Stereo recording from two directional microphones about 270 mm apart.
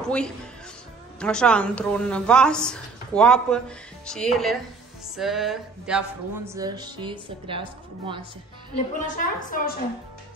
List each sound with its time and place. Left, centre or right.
0.0 s a woman's voice: centre
8.9 s a woman's voice: left